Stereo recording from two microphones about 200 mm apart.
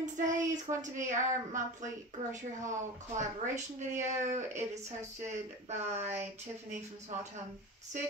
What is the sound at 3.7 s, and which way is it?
Speech, 35° right (ahead or behind).